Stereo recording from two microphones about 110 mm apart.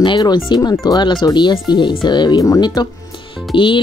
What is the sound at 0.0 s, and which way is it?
Speech, 45° left (ahead or behind).